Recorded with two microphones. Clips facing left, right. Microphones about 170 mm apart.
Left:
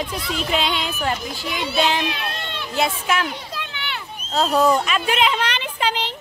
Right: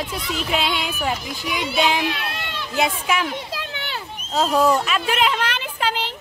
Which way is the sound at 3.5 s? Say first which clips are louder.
Right 1 dB; 35° right (ahead or behind).